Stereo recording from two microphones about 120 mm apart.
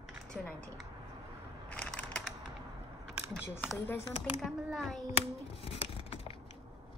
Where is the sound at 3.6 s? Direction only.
15° left (ahead or behind).